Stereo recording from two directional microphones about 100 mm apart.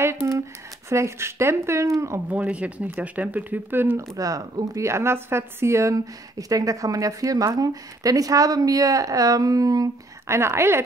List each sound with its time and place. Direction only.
0.0 s a sound: 25° right (ahead or behind)
0.8 s speech: 30° right (ahead or behind)
2.2 s speech: 15° right (ahead or behind)
4.2 s a woman's voice: 40° right (ahead or behind)
4.8 s a woman's voice: 25° right (ahead or behind)